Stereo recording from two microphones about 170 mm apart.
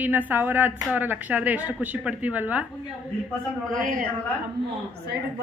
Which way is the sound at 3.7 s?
55° right (ahead or behind).